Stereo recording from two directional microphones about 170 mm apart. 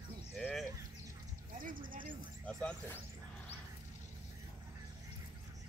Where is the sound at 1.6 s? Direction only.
55° right (ahead or behind).